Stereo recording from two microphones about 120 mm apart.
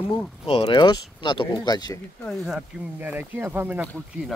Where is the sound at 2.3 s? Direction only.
Centre (ahead or behind); by 3.8 s 15° right (ahead or behind).